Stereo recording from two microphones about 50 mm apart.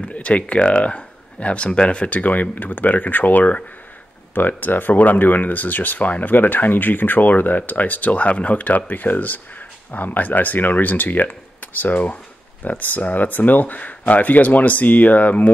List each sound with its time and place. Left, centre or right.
0.0 s speech: left